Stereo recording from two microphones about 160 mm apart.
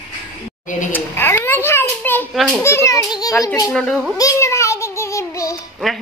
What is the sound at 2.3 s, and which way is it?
Speech, centre (ahead or behind).